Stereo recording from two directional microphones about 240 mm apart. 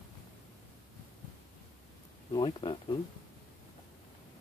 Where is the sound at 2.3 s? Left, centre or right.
Centre.